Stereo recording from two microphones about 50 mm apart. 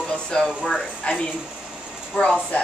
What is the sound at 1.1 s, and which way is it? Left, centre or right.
Speech, left.